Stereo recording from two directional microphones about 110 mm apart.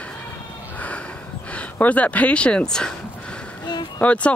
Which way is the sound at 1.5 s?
15° left (ahead or behind).